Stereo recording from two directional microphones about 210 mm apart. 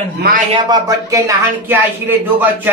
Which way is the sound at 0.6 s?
15° right (ahead or behind).